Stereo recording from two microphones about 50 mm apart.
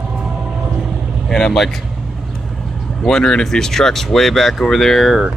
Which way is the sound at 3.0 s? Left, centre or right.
Centre.